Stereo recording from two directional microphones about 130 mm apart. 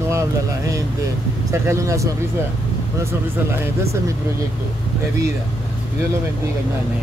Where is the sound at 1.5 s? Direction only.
25° right (ahead or behind).